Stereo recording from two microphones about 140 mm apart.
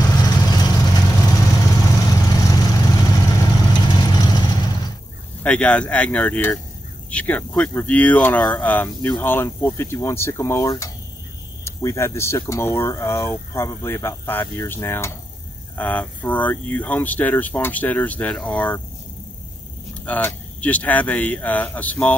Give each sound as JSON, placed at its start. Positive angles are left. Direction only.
{"t": 0.0, "sound": "vehicle", "side_deg": 25}
{"t": 5.4, "sound": "speech", "side_deg": 10}
{"t": 20.1, "sound": "speech", "side_deg": 10}